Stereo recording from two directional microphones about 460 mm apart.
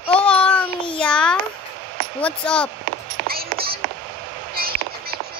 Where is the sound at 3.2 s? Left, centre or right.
Centre.